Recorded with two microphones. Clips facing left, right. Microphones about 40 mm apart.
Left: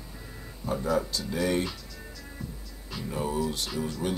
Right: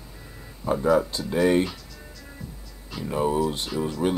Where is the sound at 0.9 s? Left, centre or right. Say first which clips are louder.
Right 7 dB; right.